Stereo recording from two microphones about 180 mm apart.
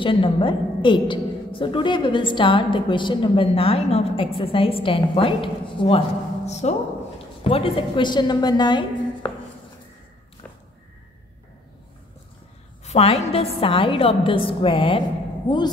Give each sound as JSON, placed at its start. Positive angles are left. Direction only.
{"t": 0.0, "sound": "a woman's voice", "side_deg": 30}
{"t": 12.8, "sound": "a woman's voice", "side_deg": 35}